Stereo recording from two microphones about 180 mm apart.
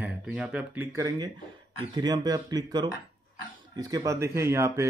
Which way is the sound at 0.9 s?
20° right (ahead or behind).